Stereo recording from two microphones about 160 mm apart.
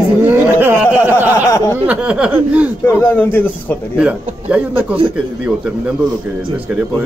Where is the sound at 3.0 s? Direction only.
10° left (ahead or behind).